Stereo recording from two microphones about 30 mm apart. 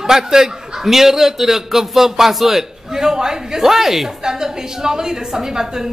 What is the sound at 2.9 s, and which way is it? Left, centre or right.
A man's voice, right.